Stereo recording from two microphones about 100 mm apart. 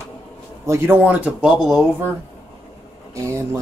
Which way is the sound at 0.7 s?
20° right (ahead or behind).